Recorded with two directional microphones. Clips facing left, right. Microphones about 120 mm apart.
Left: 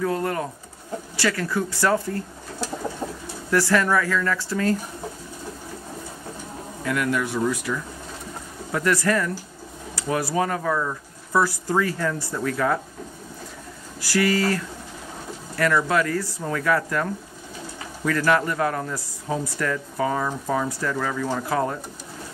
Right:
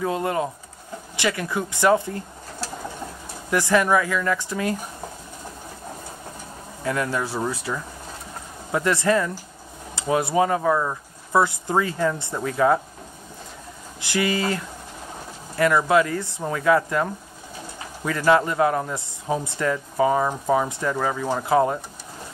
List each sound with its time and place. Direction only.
0.0 s speech: 20° right (ahead or behind)
3.4 s speech: 20° right (ahead or behind)
6.8 s speech: 30° right (ahead or behind)
14.0 s speech: 20° right (ahead or behind)